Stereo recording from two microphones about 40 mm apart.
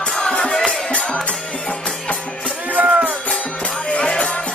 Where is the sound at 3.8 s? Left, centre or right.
Left.